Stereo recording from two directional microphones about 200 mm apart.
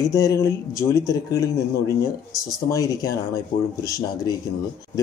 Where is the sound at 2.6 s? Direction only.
15° left (ahead or behind).